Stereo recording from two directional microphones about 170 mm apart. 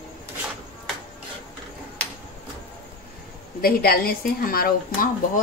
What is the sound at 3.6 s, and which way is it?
Speech, 60° left (ahead or behind).